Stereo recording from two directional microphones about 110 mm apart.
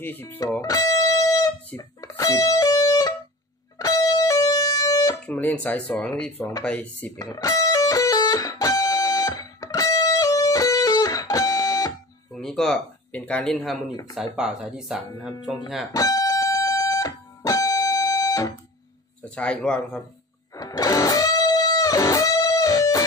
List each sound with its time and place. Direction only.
0.0 s speech: 20° left (ahead or behind)
0.4 s speech: 30° left (ahead or behind)
2.0 s music: 30° left (ahead or behind)
5.2 s speech: 10° left (ahead or behind)
7.2 s music: 35° left (ahead or behind)
12.3 s speech: 5° left (ahead or behind)
15.9 s music: 30° left (ahead or behind)
19.2 s speech: 10° left (ahead or behind)
20.5 s guitar: 35° left (ahead or behind)